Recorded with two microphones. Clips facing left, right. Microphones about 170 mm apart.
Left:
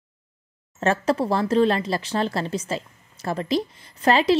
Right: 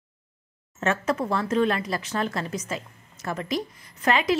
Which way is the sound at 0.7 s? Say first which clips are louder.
Left 4 dB; 30° left (ahead or behind).